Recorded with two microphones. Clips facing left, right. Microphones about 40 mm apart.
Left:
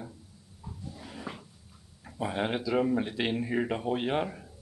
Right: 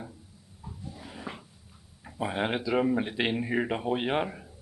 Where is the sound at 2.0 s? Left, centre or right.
Centre.